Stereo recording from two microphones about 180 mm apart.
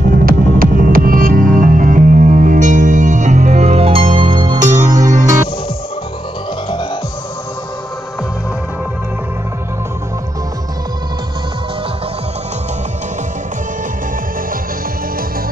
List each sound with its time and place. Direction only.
0.2 s throbbing: 50° right (ahead or behind); by 5.1 s 15° right (ahead or behind)